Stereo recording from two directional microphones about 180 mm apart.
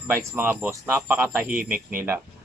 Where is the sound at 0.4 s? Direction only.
10° right (ahead or behind).